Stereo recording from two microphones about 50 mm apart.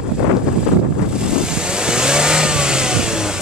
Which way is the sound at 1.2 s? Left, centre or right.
Centre.